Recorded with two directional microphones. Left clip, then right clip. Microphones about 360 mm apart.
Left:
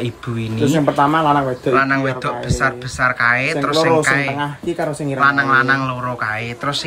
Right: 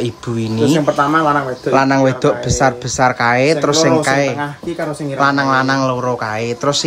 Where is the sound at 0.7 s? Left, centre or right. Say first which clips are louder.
Even; left.